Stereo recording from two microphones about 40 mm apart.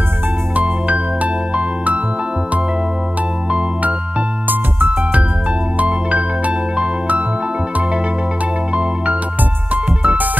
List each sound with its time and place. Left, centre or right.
0.6 s music: right
4.5 s music: right
5.8 s music: right
10.0 s music: right